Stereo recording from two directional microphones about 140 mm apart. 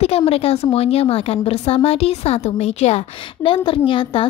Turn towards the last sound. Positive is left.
turn(degrees=40)  # may be behind; listen again after turning